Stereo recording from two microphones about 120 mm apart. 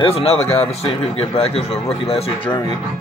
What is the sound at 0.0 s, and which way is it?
Speech, 55° left (ahead or behind).